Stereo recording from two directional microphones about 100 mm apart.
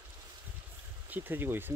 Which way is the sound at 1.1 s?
20° right (ahead or behind).